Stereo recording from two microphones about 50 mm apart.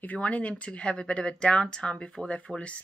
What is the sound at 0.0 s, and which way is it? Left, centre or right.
Speech, left.